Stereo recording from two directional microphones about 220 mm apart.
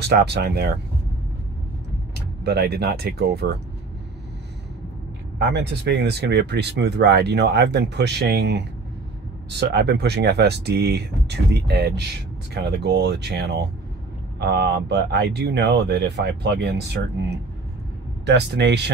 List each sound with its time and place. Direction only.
0.1 s speech: 50° right (ahead or behind)
2.4 s speech: 45° right (ahead or behind)
5.4 s speech: 50° right (ahead or behind)